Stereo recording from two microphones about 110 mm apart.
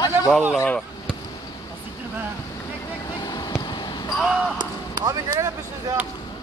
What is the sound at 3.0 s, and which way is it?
Vehicle, 35° left (ahead or behind).